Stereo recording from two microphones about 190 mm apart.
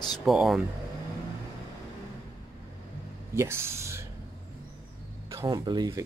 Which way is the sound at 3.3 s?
15° right (ahead or behind).